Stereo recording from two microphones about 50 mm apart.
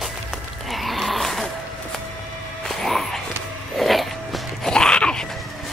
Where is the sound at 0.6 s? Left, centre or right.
Centre.